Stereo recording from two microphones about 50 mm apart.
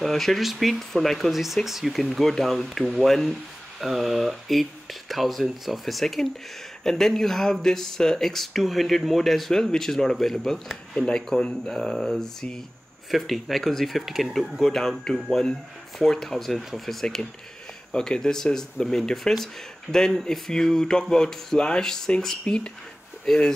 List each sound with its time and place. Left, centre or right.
0.0 s speech: centre
11.0 s speech: centre